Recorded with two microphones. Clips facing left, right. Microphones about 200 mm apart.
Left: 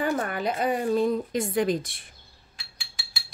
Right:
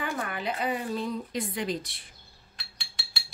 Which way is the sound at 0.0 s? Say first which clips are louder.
Left 6 dB; 40° left (ahead or behind).